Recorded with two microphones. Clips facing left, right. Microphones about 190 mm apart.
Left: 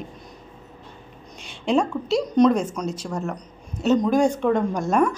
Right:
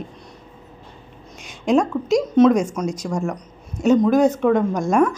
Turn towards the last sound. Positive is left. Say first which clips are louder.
# right 3 dB
turn(degrees=-10)  # may be behind; listen again after turning